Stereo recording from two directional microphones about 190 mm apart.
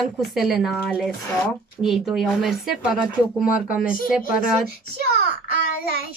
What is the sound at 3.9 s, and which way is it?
Speech, 45° left (ahead or behind).